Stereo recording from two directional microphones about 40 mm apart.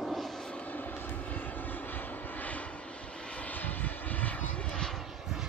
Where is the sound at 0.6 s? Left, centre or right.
Left.